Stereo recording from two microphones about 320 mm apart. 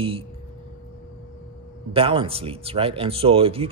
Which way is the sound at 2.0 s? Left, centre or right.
Centre.